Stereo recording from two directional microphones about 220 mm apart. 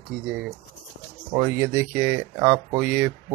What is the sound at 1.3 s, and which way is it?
Speech, 15° right (ahead or behind).